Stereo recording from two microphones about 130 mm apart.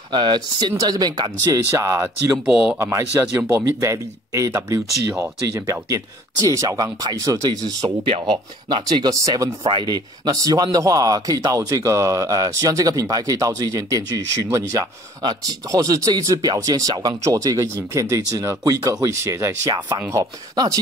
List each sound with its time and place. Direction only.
0.1 s speech: 35° right (ahead or behind)
2.3 s speech: 5° right (ahead or behind)
2.8 s speech: 25° right (ahead or behind)
9.1 s speech: 25° right (ahead or behind)